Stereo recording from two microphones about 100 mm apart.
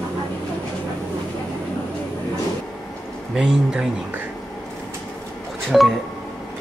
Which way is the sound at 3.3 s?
5° right (ahead or behind).